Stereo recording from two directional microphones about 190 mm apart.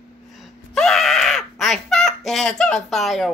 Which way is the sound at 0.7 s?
5° left (ahead or behind).